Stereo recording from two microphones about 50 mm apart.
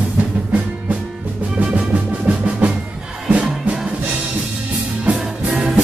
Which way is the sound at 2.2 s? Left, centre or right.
Right.